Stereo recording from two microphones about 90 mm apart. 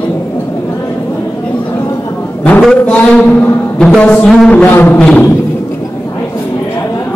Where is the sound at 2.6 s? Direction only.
10° left (ahead or behind).